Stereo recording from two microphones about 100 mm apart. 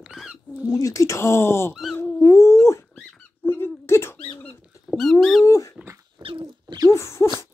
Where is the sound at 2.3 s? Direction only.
30° left (ahead or behind).